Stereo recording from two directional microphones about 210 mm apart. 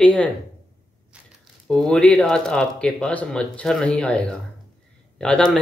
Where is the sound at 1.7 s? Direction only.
5° left (ahead or behind).